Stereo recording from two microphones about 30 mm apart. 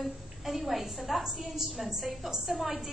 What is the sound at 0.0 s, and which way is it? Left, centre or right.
A woman's voice, centre.